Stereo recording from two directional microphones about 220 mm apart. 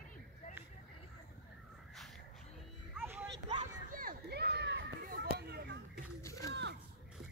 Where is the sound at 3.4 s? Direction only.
35° right (ahead or behind).